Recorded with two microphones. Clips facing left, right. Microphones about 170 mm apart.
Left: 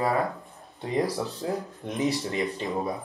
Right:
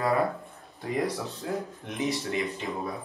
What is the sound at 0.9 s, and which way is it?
Speech, 35° left (ahead or behind).